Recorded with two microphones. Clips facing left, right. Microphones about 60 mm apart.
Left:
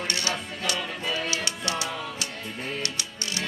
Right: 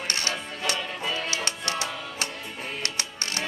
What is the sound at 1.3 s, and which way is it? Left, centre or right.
Music, right.